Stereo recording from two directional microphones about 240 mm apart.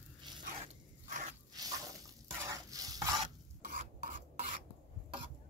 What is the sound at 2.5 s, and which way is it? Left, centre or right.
Rub, centre.